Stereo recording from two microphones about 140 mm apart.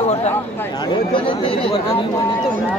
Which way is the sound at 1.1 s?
40° left (ahead or behind).